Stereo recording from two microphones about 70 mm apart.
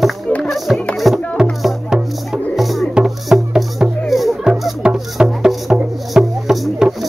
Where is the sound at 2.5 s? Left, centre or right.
Centre.